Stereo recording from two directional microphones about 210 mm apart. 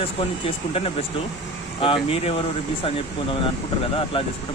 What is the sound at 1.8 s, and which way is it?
Speech, 25° left (ahead or behind).